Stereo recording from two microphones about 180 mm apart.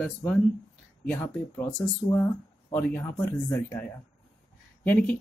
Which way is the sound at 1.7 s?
25° left (ahead or behind).